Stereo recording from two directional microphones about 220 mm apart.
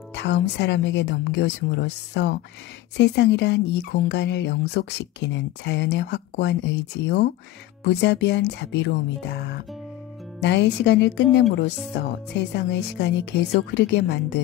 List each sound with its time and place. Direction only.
0.1 s speech: 50° left (ahead or behind)